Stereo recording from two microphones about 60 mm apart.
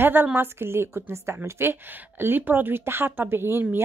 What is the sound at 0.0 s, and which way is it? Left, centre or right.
A woman's voice, right.